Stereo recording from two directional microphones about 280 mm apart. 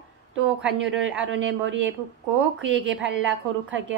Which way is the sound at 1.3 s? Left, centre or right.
Right.